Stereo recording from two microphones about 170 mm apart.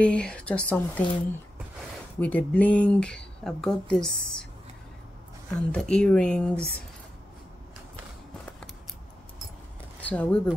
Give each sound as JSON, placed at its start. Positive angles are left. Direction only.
{"t": 0.0, "sound": "speech", "side_deg": 5}
{"t": 2.1, "sound": "speech", "side_deg": 10}
{"t": 5.5, "sound": "speech", "side_deg": 5}
{"t": 10.0, "sound": "speech", "side_deg": 10}